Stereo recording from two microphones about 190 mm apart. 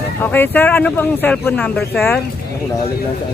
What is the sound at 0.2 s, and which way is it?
Speech, 10° left (ahead or behind).